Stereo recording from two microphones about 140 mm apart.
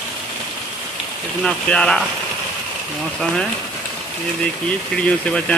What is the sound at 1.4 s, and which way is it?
Speech, 5° left (ahead or behind).